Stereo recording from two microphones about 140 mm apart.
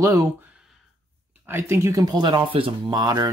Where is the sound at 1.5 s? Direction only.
20° right (ahead or behind).